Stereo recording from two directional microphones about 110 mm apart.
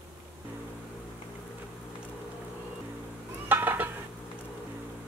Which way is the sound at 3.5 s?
15° right (ahead or behind).